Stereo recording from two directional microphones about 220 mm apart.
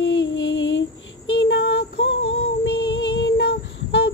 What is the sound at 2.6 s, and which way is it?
Music, 55° left (ahead or behind).